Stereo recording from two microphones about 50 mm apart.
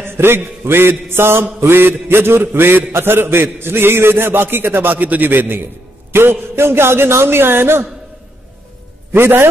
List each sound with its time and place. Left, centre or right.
0.0 s mantra: right
9.1 s mantra: right